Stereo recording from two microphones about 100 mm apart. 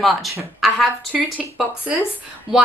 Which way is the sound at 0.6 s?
5° right (ahead or behind).